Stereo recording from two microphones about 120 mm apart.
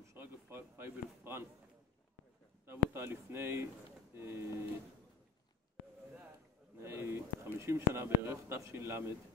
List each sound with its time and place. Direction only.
0.0 s speech: 20° right (ahead or behind)
2.6 s speech: 20° right (ahead or behind)
4.1 s a sound: 20° right (ahead or behind)
6.8 s bird: 20° right (ahead or behind)
7.5 s speech: 20° right (ahead or behind)